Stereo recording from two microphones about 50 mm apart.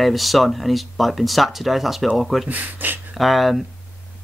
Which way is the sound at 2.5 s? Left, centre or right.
Right.